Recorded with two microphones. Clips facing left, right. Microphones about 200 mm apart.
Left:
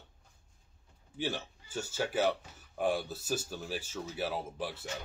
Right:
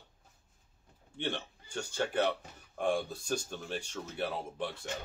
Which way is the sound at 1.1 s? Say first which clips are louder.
Left 1 dB; 5° left (ahead or behind).